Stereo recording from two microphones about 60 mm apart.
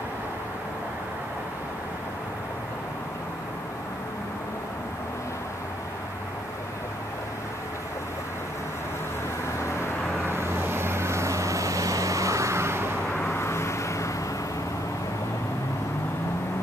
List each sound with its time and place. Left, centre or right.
10.3 s vehicle: right
13.2 s vehicle: left